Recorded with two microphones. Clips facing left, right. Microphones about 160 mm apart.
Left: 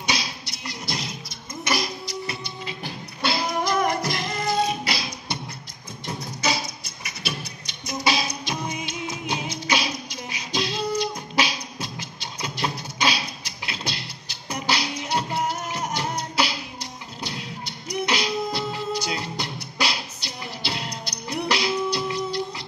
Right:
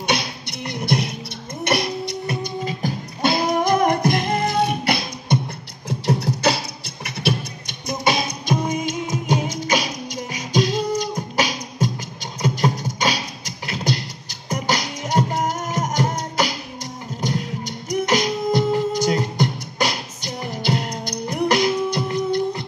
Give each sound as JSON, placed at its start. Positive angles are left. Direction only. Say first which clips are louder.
{"t": 0.0, "sound": "music", "louder": "right 6 dB", "side_deg": -55}
{"t": 1.6, "sound": "beatboxing", "louder": "right 5 dB", "side_deg": -60}
{"t": 5.9, "sound": "beatboxing", "louder": "right 12 dB", "side_deg": -75}
{"t": 14.5, "sound": "music", "louder": "right 3 dB", "side_deg": -45}